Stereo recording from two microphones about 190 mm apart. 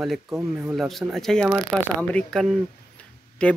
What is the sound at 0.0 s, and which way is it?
Speech, centre (ahead or behind).